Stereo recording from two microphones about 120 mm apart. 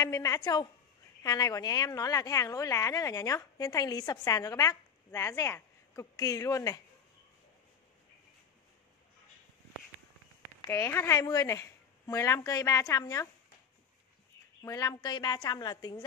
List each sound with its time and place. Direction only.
0.0 s a woman's voice: 30° left (ahead or behind)
10.7 s a woman's voice: 20° left (ahead or behind)
11.1 s a woman's voice: 30° left (ahead or behind)
14.6 s a woman's voice: 30° left (ahead or behind)